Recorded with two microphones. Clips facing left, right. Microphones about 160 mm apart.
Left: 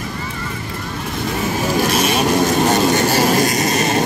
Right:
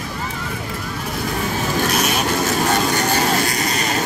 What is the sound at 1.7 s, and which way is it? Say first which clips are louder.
Vehicle: left 3 dB; centre (ahead or behind).